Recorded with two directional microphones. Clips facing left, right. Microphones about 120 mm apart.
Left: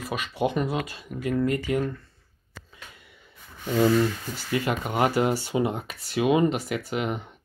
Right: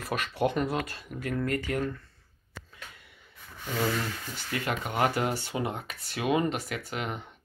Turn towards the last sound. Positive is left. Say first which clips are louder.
# left 6 dB
turn(degrees=10)  # may be behind; listen again after turning